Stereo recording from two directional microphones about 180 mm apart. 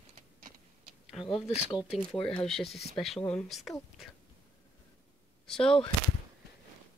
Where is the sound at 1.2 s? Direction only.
30° left (ahead or behind).